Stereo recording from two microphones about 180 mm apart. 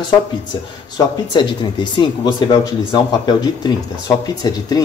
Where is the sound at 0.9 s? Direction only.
25° left (ahead or behind).